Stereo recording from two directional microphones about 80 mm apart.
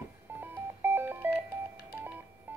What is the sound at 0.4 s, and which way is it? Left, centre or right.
Telephone dialing, right.